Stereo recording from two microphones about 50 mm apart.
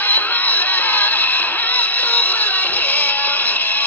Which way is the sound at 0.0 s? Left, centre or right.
Left.